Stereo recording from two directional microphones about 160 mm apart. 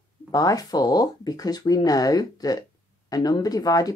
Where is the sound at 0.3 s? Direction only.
20° left (ahead or behind).